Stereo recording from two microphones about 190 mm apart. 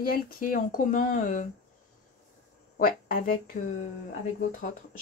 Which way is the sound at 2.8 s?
50° left (ahead or behind).